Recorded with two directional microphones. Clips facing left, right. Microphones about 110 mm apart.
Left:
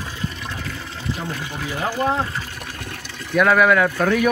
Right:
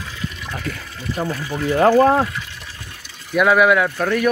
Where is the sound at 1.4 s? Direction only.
15° left (ahead or behind).